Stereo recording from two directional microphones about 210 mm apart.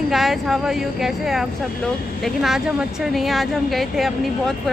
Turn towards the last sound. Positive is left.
turn(degrees=0)  # may be behind; listen again after turning